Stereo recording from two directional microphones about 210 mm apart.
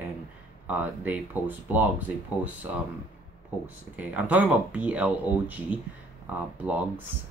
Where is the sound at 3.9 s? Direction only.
5° right (ahead or behind).